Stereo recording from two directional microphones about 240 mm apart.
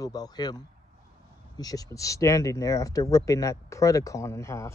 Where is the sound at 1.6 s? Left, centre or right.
Centre.